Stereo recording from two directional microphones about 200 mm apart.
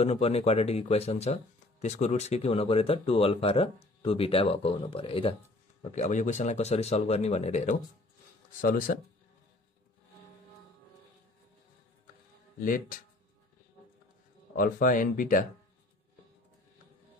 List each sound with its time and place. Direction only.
0.0 s speech: 30° left (ahead or behind)
12.5 s speech: 45° left (ahead or behind)
14.6 s speech: 45° left (ahead or behind)